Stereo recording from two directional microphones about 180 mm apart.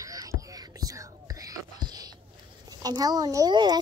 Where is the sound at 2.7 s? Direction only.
20° right (ahead or behind).